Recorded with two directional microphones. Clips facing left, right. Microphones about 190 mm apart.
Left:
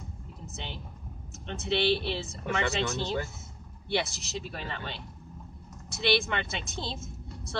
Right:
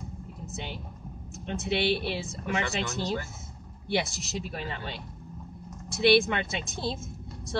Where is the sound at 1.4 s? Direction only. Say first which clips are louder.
Even; 10° right (ahead or behind).